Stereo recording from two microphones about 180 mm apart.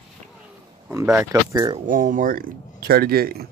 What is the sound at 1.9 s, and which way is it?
Speech, 50° right (ahead or behind).